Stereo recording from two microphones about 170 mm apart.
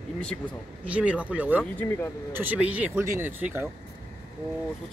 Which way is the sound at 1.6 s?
15° left (ahead or behind).